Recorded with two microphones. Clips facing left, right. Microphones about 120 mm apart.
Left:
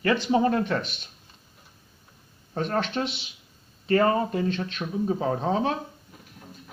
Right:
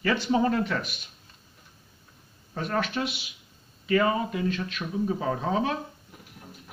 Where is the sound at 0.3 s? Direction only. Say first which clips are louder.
Left 1 dB; 25° left (ahead or behind).